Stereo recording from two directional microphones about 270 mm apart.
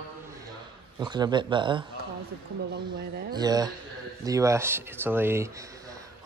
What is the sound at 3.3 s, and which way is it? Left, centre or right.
Speech, centre.